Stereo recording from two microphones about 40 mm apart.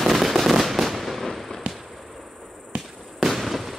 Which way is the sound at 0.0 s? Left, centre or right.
Centre.